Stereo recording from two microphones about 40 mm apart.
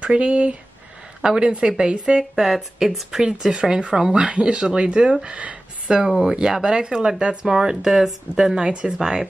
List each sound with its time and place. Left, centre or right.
0.0 s speech: right
2.4 s speech: centre
4.2 s speech: right